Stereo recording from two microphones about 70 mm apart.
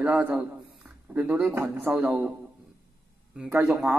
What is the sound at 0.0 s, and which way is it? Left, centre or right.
Speech, right.